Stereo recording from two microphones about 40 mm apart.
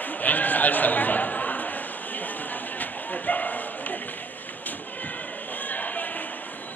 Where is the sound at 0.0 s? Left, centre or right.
Left.